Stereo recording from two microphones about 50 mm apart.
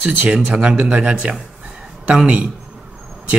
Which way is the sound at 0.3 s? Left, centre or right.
Centre.